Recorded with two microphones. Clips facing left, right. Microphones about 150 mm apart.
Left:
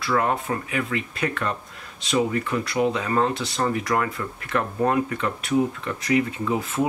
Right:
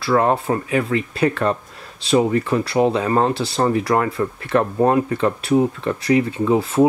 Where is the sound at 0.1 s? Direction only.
35° right (ahead or behind).